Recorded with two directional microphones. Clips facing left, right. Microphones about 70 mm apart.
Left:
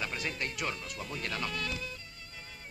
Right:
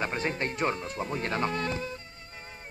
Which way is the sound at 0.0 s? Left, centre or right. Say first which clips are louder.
Right 6 dB; right.